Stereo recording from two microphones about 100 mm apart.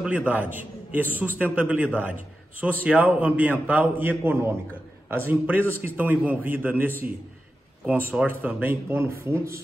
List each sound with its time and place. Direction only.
0.0 s a man's voice: 15° right (ahead or behind)